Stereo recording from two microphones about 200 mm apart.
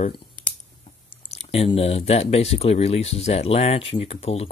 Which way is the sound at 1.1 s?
30° left (ahead or behind).